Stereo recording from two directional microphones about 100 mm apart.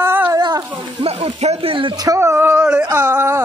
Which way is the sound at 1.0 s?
85° right.